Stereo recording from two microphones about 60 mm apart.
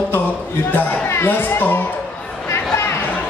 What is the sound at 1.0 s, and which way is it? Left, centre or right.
Speech, left.